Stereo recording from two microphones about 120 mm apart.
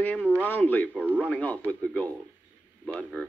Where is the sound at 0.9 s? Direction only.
10° right (ahead or behind).